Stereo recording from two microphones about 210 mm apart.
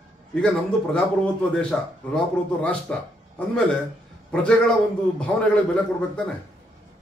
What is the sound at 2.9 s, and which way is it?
A man's voice, 5° left (ahead or behind).